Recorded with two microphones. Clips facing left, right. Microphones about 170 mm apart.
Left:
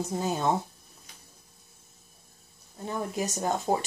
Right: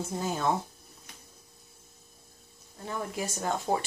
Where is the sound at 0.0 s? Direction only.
20° left (ahead or behind).